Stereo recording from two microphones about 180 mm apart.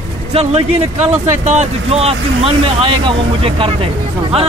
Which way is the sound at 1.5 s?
35° right (ahead or behind).